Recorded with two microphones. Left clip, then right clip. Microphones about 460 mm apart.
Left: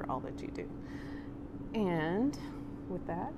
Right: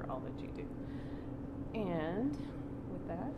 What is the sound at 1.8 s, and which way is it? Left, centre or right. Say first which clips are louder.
Speech: left 5 dB; left.